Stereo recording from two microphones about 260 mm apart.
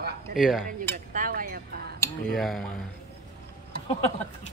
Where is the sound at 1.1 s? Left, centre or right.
Right.